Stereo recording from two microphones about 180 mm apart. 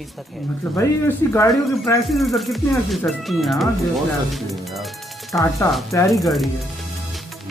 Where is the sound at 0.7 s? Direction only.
15° left (ahead or behind).